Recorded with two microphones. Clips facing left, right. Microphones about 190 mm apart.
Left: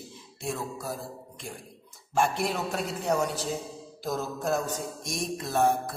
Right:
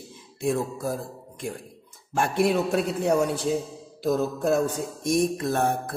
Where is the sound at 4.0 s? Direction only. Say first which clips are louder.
Right 8 dB; 60° right (ahead or behind).